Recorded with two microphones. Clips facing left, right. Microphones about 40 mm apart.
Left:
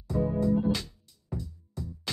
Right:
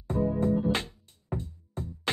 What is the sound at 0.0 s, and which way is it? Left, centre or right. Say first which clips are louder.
Music: right 1 dB; right.